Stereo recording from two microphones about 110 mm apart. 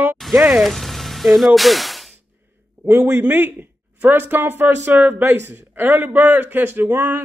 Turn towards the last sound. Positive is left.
turn(degrees=-20)  # may be behind; listen again after turning